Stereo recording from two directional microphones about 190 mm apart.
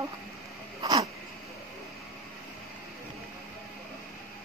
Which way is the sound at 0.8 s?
20° right (ahead or behind).